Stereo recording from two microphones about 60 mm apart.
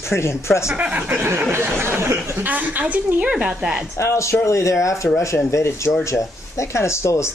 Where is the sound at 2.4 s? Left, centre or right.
Right; by 3.8 s centre.